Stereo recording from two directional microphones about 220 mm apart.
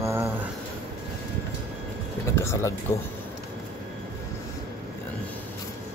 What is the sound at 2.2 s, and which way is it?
Speech, 10° left (ahead or behind).